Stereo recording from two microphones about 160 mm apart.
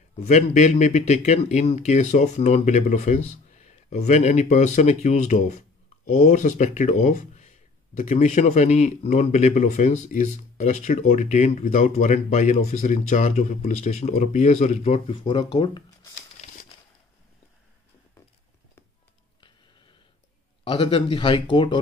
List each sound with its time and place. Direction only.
0.2 s speech: 45° left (ahead or behind)
16.4 s a sound: 40° left (ahead or behind)
20.6 s speech: 30° left (ahead or behind)